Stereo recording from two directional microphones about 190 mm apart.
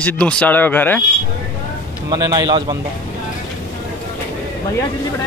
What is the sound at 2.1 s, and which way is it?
Speech, 20° right (ahead or behind).